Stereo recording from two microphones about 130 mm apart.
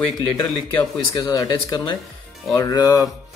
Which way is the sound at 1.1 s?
30° left (ahead or behind).